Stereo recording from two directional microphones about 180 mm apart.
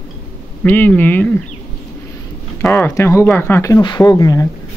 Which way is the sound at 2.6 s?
10° left (ahead or behind).